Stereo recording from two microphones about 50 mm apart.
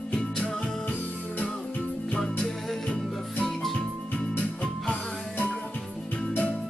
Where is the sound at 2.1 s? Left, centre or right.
Centre.